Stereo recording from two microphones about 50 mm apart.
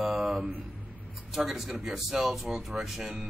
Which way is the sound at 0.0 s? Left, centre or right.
Centre.